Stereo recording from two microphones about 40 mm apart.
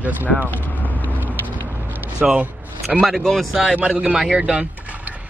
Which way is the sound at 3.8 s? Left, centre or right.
Right.